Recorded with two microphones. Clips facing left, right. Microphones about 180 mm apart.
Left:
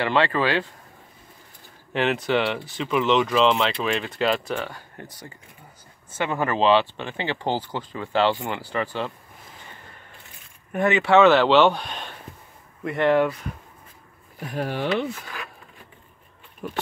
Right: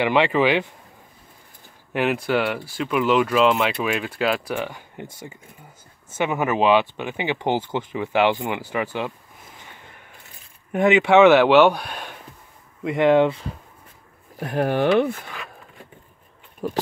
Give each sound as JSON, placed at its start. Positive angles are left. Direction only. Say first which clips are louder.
{"t": 0.0, "sound": "speech", "louder": "right 3 dB", "side_deg": -15}
{"t": 2.0, "sound": "speech", "louder": "right 1 dB", "side_deg": -10}
{"t": 10.7, "sound": "speech", "louder": "right 3 dB", "side_deg": -15}
{"t": 14.4, "sound": "speech", "louder": "right 6 dB", "side_deg": -55}
{"t": 16.6, "sound": "speech", "louder": "right 6 dB", "side_deg": -35}